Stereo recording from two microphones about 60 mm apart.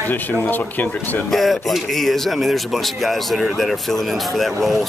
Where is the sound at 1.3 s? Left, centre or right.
Centre.